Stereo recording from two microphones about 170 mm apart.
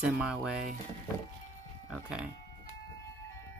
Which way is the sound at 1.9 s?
5° right (ahead or behind).